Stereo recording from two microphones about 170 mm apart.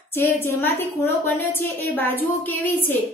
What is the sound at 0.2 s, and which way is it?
A woman's voice, 10° left (ahead or behind).